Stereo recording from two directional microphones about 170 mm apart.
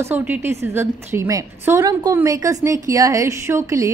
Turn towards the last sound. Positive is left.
turn(degrees=-15)  # may be behind; listen again after turning